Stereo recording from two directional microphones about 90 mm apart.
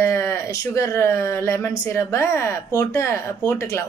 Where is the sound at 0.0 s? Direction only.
30° left (ahead or behind).